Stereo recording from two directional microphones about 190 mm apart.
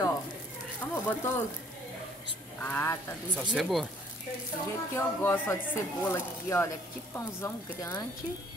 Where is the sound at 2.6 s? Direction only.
10° left (ahead or behind).